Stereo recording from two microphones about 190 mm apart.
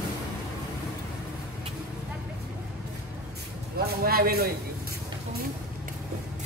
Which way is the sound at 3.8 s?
55° right (ahead or behind).